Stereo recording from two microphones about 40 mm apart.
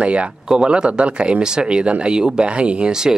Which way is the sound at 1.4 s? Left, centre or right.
Centre.